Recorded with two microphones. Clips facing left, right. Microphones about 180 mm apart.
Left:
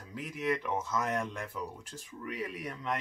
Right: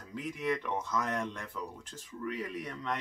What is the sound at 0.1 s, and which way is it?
Speech, 5° left (ahead or behind).